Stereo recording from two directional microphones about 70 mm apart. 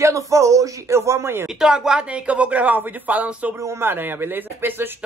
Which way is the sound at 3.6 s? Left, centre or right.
Right.